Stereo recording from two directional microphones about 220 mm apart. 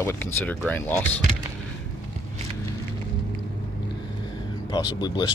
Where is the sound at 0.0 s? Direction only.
10° left (ahead or behind).